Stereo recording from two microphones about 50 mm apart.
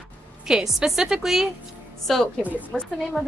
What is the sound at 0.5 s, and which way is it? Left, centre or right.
A woman's voice, centre.